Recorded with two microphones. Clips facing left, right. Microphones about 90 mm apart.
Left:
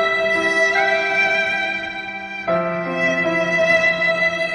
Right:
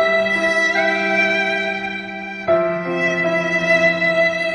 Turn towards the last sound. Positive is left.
turn(degrees=0)  # may be behind; listen again after turning